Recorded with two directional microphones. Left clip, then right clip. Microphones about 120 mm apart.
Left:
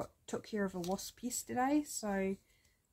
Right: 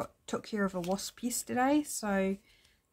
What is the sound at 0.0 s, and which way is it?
Speech, 20° right (ahead or behind).